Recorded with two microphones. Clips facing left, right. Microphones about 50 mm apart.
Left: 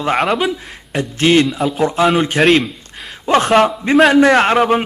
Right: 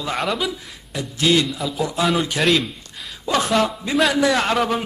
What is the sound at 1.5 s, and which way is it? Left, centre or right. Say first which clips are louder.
Speech: left 8 dB; left.